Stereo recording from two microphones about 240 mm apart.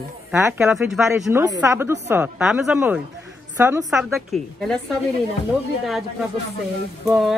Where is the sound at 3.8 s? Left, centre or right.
Centre.